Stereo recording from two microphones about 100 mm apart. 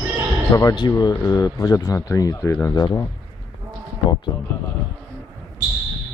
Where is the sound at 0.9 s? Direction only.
35° left (ahead or behind).